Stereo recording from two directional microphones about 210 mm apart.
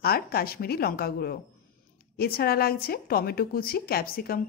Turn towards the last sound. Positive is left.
turn(degrees=45)  # may be behind; listen again after turning